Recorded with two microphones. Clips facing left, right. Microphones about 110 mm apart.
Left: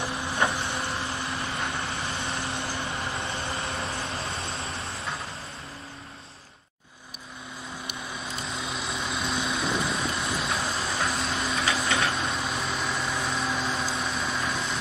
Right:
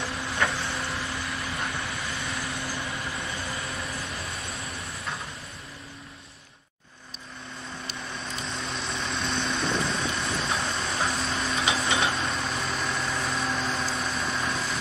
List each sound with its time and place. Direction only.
0.0 s vehicle: 25° left (ahead or behind)
7.8 s vehicle: 5° left (ahead or behind)